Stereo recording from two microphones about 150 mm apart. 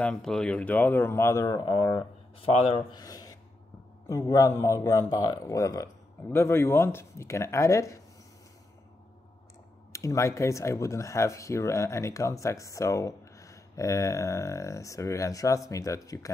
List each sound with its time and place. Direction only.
0.0 s speech: 5° left (ahead or behind); by 2.8 s 40° left (ahead or behind)
2.9 s speech: 25° left (ahead or behind)
9.9 s speech: 20° left (ahead or behind)